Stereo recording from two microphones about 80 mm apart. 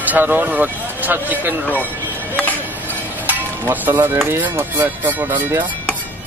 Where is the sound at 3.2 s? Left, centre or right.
Right.